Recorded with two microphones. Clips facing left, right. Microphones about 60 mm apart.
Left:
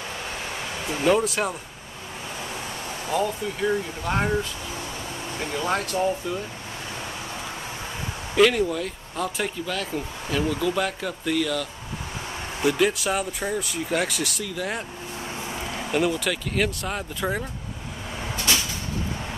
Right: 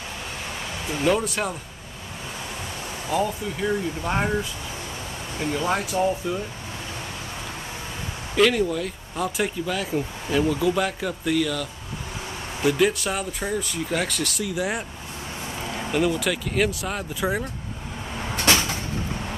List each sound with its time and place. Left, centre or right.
0.8 s speech: centre
3.1 s speech: centre
8.4 s speech: centre
12.6 s speech: centre
18.3 s cupboard open or close: right